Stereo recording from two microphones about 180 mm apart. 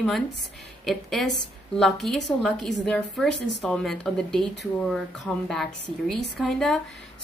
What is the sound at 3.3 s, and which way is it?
Speech, 75° left (ahead or behind).